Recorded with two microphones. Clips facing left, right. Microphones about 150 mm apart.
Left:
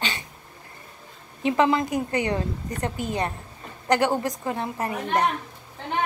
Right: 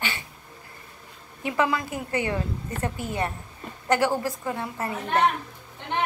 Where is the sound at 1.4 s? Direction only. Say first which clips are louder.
Left 4 dB; 25° left (ahead or behind).